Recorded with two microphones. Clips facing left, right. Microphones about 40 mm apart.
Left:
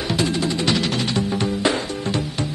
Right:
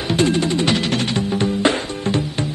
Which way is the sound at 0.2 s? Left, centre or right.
Right.